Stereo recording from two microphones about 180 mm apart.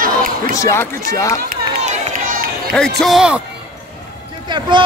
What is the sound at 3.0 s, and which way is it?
Speech, centre (ahead or behind).